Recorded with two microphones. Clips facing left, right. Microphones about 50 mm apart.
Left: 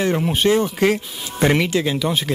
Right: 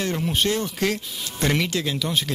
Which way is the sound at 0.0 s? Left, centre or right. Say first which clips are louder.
Left 6 dB; centre.